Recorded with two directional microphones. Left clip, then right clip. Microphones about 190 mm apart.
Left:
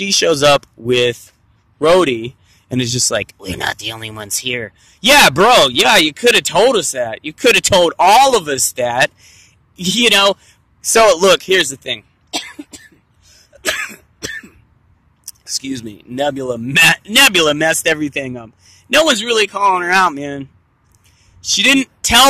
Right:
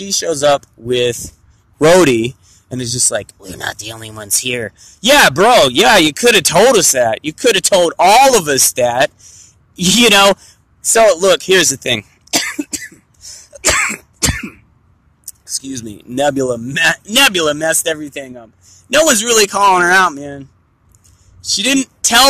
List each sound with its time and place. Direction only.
0.0 s speech: 15° left (ahead or behind)
1.9 s speech: 15° right (ahead or behind)
2.7 s speech: 10° left (ahead or behind); by 7.4 s 10° right (ahead or behind)
7.4 s speech: 5° left (ahead or behind)
9.8 s speech: 10° right (ahead or behind)
10.8 s speech: 10° left (ahead or behind)
11.2 s speech: centre (ahead or behind)
11.5 s speech: 10° right (ahead or behind)
12.3 s cough: 35° right (ahead or behind)
13.3 s throat clearing: 25° right (ahead or behind)
15.7 s speech: 5° right (ahead or behind)
17.9 s speech: 15° left (ahead or behind)
18.9 s speech: 5° right (ahead or behind)
20.0 s speech: 5° left (ahead or behind)